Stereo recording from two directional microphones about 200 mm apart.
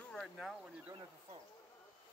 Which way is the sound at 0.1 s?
Centre (ahead or behind).